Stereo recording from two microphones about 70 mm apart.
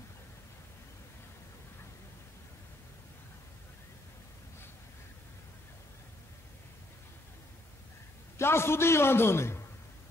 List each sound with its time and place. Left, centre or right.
8.4 s a man's voice: left